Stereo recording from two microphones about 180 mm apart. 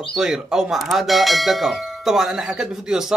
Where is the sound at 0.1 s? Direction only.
5° right (ahead or behind).